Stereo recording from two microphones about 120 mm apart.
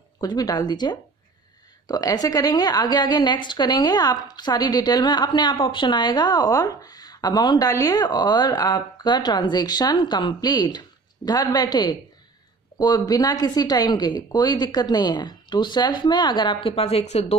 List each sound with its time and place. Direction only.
0.2 s a woman's voice: 30° left (ahead or behind)
16.7 s a woman's voice: 60° left (ahead or behind)